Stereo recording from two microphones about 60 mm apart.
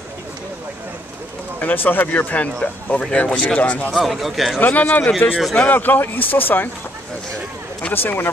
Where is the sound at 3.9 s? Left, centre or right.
Centre.